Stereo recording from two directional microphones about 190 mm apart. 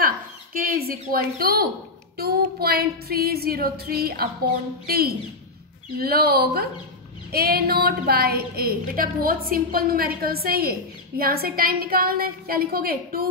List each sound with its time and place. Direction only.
0.0 s a woman's voice: 50° right (ahead or behind)